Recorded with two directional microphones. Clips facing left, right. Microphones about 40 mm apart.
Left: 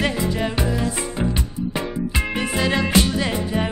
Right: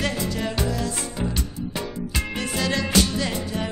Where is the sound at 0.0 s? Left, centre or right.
Left.